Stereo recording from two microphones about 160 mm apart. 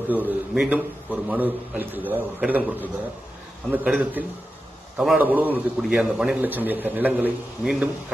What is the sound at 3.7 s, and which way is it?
A man's voice, 5° right (ahead or behind).